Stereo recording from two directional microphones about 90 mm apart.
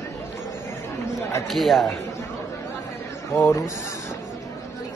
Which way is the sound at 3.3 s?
35° left (ahead or behind).